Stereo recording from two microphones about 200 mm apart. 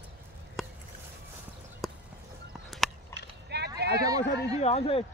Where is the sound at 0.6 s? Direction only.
Centre (ahead or behind).